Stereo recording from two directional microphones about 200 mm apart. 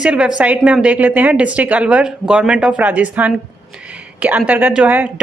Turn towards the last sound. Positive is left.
turn(degrees=-5)  # may be behind; listen again after turning